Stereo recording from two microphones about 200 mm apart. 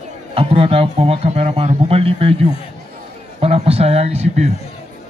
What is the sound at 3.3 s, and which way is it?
A man's voice, 30° right (ahead or behind).